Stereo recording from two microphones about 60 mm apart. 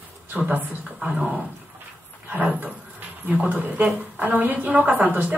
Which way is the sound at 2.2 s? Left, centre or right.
Right.